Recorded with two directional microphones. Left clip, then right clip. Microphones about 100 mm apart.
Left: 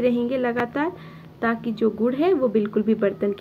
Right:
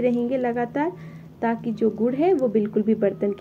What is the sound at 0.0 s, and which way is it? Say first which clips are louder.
Speech: left 1 dB; 20° left (ahead or behind).